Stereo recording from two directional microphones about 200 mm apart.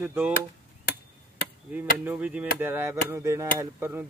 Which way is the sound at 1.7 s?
10° right (ahead or behind).